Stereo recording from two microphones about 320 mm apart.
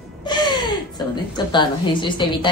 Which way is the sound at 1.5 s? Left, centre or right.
Centre.